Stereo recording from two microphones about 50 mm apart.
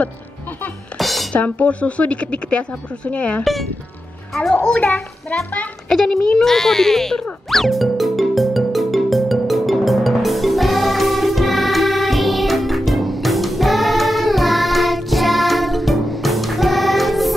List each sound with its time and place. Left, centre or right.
0.9 s music: centre
1.3 s speech: left
4.6 s speech: left
5.9 s music: centre